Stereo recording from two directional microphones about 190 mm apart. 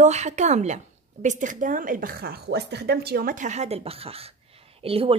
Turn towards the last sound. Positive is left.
turn(degrees=-30)  # may be behind; listen again after turning